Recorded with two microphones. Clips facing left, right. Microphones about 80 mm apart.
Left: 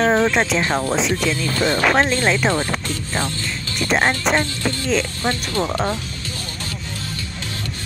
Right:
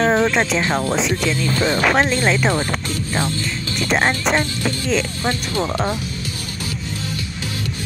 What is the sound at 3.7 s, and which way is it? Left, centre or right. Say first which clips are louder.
Speech: even; centre.